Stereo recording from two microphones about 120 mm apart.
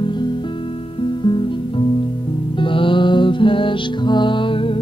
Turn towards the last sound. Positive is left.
turn(degrees=45)  # may be behind; listen again after turning